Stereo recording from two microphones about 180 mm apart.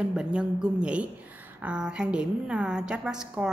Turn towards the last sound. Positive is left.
turn(degrees=-5)  # may be behind; listen again after turning